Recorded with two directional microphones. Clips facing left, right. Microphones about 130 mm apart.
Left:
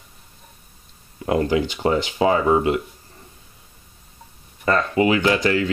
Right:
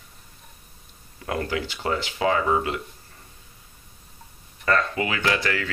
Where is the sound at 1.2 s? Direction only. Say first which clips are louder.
Left 8 dB; 25° left (ahead or behind).